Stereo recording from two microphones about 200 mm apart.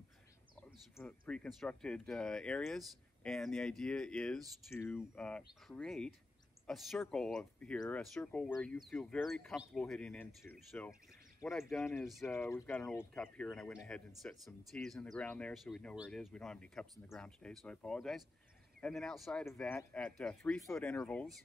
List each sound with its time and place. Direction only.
0.6 s speech: 5° left (ahead or behind)
12.3 s speech: 15° left (ahead or behind)